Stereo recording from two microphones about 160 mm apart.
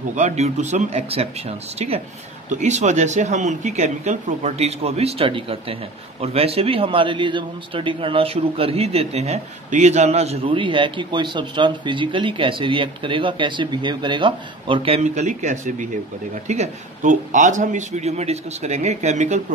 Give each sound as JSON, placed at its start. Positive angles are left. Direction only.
{"t": 0.1, "sound": "a man's voice", "side_deg": -45}